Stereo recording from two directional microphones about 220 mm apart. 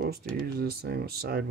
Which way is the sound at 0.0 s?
45° right (ahead or behind).